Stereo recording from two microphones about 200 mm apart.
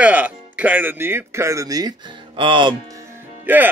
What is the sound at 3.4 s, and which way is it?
Speech, 10° right (ahead or behind).